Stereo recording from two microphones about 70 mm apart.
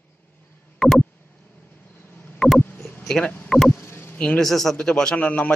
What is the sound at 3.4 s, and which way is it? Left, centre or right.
Speech, centre.